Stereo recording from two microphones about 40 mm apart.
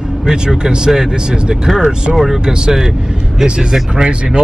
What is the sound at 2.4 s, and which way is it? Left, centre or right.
Speech, right.